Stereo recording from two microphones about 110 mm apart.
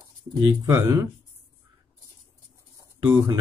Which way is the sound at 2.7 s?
30° right (ahead or behind).